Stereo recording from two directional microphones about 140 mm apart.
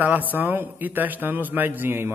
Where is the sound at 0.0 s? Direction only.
10° right (ahead or behind).